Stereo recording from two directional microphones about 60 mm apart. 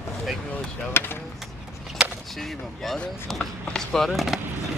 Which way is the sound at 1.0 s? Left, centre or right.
Left.